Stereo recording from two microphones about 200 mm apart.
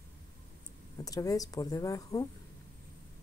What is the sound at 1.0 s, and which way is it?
A woman's voice, 20° left (ahead or behind).